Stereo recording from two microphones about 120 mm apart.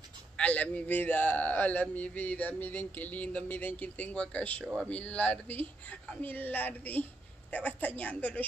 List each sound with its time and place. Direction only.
0.4 s a man's voice: 10° left (ahead or behind)